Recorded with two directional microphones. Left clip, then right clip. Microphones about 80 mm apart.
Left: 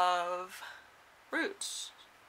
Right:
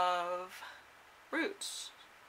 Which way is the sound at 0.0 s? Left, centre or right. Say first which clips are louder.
Left 3 dB; left.